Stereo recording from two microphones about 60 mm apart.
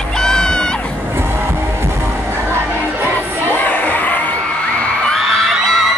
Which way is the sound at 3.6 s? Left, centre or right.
Left.